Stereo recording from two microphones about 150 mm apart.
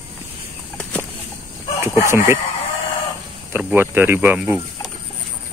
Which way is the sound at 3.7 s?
15° right (ahead or behind).